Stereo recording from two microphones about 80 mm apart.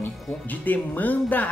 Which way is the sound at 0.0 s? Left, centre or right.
Left.